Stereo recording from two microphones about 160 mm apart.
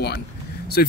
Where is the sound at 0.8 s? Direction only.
70° left (ahead or behind).